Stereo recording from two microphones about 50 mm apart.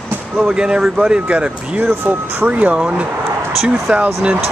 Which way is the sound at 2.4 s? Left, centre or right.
Right.